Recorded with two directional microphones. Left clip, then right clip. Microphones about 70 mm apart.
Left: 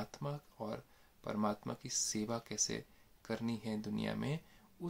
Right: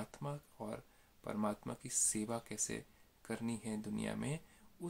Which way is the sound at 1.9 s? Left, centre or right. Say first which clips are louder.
Left 1 dB; centre.